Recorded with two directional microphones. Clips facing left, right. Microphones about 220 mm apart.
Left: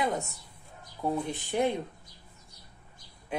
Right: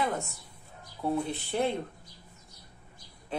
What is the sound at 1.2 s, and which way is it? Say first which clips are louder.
Speech: left 1 dB; 15° left (ahead or behind).